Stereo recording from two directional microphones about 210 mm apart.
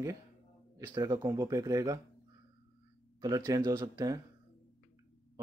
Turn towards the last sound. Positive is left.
turn(degrees=-20)  # may be behind; listen again after turning